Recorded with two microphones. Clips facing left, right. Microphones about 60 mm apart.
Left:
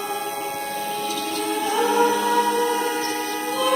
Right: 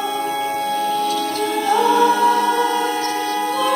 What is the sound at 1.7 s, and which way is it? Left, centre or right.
Music, right.